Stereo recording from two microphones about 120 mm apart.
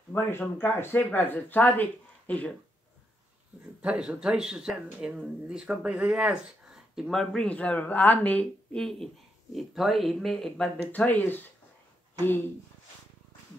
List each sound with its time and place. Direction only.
0.1 s speech: 15° left (ahead or behind)
3.8 s speech: 10° right (ahead or behind)
10.9 s speech: 15° left (ahead or behind)